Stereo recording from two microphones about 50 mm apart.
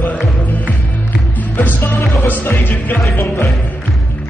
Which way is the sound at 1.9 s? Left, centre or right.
Left.